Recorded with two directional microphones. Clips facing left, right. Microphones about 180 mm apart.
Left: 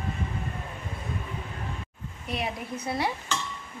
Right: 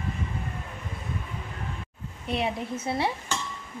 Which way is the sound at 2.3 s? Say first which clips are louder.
Right 4 dB; 25° right (ahead or behind).